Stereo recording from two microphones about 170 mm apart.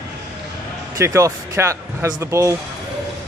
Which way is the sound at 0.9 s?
20° right (ahead or behind).